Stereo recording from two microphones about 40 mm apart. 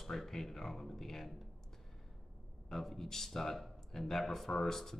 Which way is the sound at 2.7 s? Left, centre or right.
Centre.